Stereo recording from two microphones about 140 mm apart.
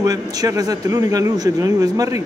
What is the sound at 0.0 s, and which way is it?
Speech, 25° right (ahead or behind).